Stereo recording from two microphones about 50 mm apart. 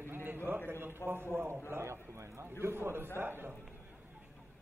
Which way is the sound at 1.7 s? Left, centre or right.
Right.